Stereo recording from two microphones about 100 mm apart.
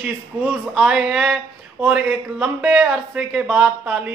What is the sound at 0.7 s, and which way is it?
Speech, 5° right (ahead or behind).